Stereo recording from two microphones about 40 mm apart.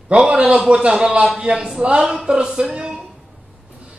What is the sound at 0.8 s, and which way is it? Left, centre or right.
Speech, right.